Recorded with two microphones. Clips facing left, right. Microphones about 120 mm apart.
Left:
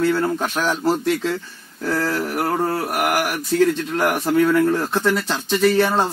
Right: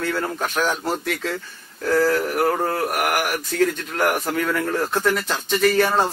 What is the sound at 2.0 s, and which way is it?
Mantra, 5° left (ahead or behind).